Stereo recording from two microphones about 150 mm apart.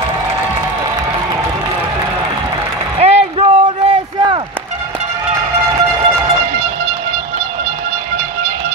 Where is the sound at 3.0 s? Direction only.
45° right (ahead or behind).